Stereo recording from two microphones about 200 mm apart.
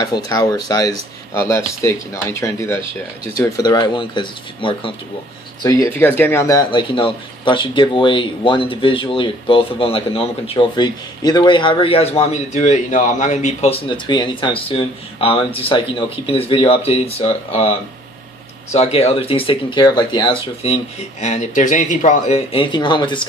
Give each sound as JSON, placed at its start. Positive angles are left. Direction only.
{"t": 0.0, "sound": "speech", "side_deg": 20}
{"t": 21.2, "sound": "speech", "side_deg": 35}